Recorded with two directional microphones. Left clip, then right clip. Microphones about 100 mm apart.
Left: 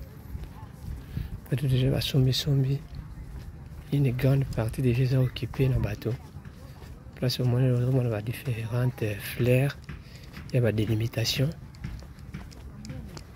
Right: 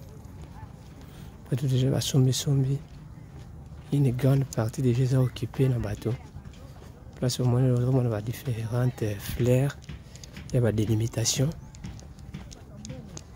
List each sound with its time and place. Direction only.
1.5 s speech: 40° right (ahead or behind)
2.5 s speech: 25° right (ahead or behind)
3.9 s speech: 35° right (ahead or behind)
7.2 s speech: 35° right (ahead or behind)